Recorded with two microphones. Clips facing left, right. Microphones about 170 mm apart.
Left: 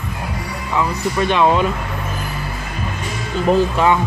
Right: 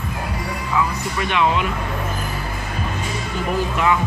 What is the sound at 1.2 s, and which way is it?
Speech, 35° left (ahead or behind).